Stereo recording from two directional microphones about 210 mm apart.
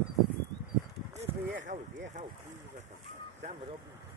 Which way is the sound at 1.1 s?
35° right (ahead or behind).